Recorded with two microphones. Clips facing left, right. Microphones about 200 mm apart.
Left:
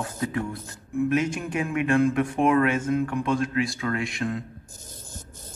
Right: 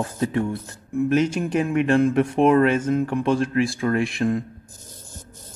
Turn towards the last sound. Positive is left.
turn(degrees=-30)  # may be behind; listen again after turning